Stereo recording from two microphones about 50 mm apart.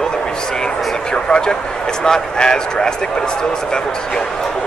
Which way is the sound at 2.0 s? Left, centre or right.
Centre.